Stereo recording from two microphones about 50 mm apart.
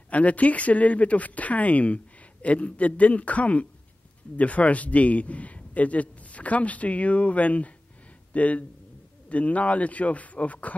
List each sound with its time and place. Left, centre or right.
0.1 s a man's voice: left